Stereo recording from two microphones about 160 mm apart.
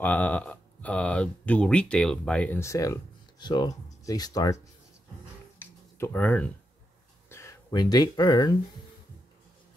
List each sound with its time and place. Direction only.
0.0 s speech: 10° left (ahead or behind)
5.9 s speech: 15° left (ahead or behind)